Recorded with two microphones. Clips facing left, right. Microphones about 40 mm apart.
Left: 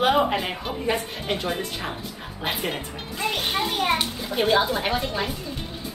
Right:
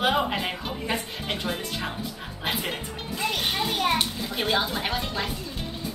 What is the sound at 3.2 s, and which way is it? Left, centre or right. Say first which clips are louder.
A child's voice: left 2 dB; centre.